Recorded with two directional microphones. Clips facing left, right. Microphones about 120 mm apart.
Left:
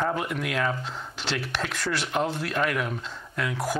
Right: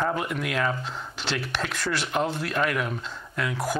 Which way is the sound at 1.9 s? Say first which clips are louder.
Even; 20° right (ahead or behind).